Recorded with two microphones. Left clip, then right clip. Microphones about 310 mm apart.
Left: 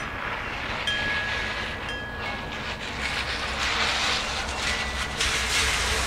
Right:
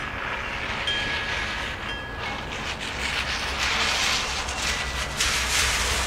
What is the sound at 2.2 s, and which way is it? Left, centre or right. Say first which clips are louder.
Vehicle: right 1 dB; right.